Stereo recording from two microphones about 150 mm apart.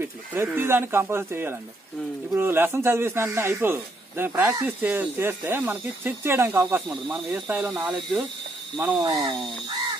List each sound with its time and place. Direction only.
0.0 s a man's voice: 15° right (ahead or behind)
6.9 s speech: 5° right (ahead or behind)
7.4 s a man's voice: 15° right (ahead or behind)
7.7 s speech: centre (ahead or behind)
9.0 s speech: 30° right (ahead or behind)